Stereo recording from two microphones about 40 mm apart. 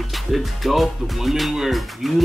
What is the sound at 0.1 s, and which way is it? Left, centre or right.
Speech, centre.